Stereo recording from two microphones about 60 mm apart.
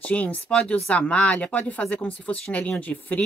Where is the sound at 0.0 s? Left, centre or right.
Left.